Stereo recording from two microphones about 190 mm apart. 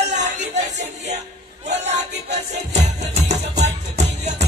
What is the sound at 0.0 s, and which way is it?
Music, 40° right (ahead or behind).